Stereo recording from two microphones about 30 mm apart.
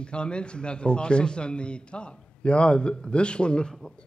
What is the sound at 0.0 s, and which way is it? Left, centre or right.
Speech, left.